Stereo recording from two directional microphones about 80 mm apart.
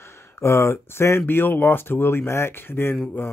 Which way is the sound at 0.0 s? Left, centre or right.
Left.